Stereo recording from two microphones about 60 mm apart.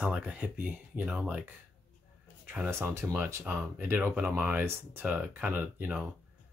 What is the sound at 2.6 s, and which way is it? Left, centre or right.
Speech, right.